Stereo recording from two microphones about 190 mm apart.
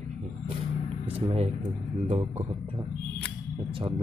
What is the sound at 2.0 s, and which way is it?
Speech, 35° right (ahead or behind).